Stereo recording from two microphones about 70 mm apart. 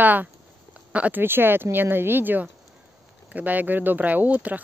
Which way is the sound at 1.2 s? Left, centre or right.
Right.